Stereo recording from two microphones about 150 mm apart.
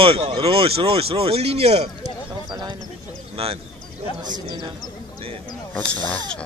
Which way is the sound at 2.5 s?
25° right (ahead or behind).